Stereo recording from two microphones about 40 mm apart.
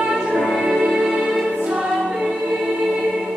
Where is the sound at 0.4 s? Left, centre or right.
Centre.